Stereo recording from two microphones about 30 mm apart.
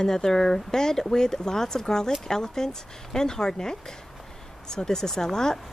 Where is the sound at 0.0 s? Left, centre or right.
Centre.